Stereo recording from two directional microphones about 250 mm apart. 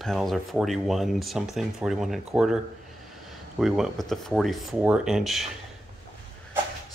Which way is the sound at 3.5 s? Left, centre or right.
Centre.